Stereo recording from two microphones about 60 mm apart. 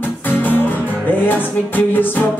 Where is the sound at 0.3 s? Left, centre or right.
Left.